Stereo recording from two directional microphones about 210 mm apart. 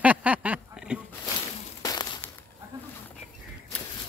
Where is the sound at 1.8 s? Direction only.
15° left (ahead or behind).